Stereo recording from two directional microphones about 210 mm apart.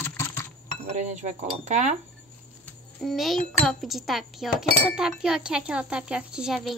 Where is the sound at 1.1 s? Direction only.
35° right (ahead or behind).